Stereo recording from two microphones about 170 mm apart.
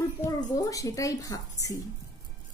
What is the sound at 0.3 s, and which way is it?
A child's voice, 20° left (ahead or behind).